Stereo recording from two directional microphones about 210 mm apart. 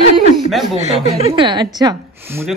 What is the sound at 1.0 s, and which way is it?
Speech, 30° right (ahead or behind).